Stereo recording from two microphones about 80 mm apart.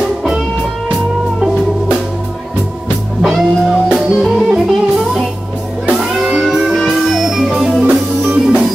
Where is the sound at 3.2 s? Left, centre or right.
Centre.